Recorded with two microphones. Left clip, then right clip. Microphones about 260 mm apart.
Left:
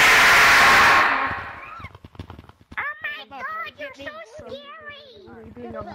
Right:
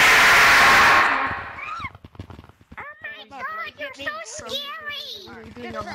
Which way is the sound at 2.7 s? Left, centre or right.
Left.